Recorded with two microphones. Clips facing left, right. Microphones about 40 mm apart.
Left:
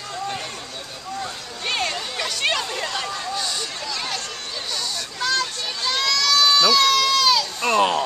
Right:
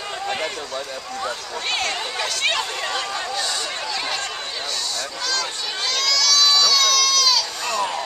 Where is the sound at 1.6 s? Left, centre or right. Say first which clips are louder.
Even; centre.